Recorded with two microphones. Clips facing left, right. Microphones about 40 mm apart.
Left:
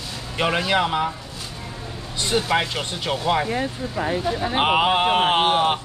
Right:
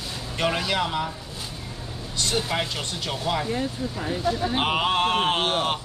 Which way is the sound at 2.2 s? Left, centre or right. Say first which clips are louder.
Left 5 dB; centre.